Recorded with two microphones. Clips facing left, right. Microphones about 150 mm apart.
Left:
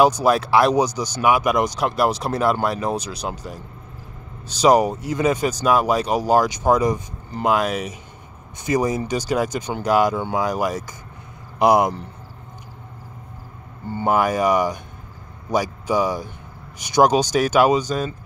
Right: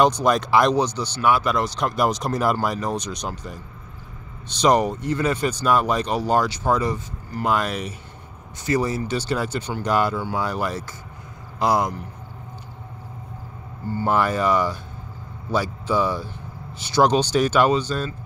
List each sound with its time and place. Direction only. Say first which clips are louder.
0.0 s speech: left 2 dB; 5° left (ahead or behind)
4.6 s speech: left 3 dB; 10° left (ahead or behind)
13.9 s speech: left 2 dB; 15° left (ahead or behind)